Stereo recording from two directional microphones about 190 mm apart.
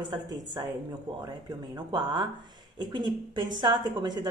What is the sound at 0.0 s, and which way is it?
Speech, 20° right (ahead or behind).